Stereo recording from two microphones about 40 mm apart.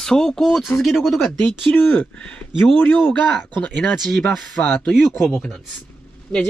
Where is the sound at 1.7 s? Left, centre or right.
Left.